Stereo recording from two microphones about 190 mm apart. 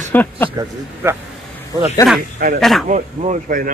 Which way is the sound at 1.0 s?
15° right (ahead or behind).